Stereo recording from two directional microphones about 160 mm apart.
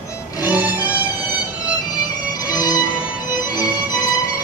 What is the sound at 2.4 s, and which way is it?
Music, 25° left (ahead or behind).